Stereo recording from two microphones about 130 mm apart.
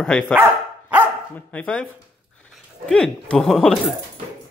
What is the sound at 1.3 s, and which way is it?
Speech, 10° left (ahead or behind).